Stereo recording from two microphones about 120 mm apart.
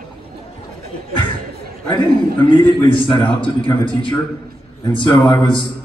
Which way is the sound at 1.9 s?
40° left (ahead or behind).